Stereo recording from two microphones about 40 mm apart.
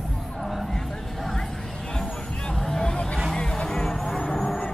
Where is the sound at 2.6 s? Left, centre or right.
Centre.